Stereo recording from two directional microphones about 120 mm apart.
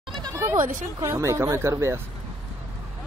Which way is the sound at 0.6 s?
90° right.